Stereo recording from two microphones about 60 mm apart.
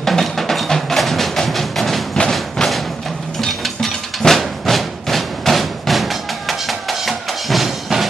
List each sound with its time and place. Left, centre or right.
0.0 s music: centre